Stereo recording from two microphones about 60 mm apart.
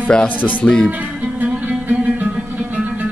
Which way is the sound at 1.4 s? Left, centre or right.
Right.